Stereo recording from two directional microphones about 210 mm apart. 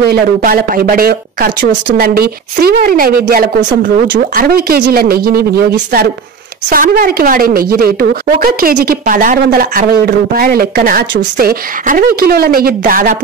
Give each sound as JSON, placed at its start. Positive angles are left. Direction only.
{"t": 0.1, "sound": "a woman's voice", "side_deg": -45}
{"t": 6.7, "sound": "a woman's voice", "side_deg": -45}